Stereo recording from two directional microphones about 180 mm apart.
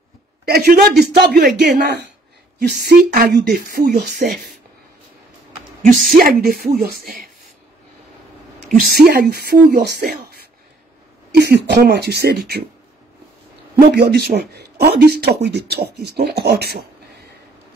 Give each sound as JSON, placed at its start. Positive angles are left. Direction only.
{"t": 0.5, "sound": "speech", "side_deg": -60}
{"t": 2.7, "sound": "speech", "side_deg": -60}
{"t": 5.9, "sound": "speech", "side_deg": -55}
{"t": 8.9, "sound": "speech", "side_deg": -60}
{"t": 13.7, "sound": "speech", "side_deg": -65}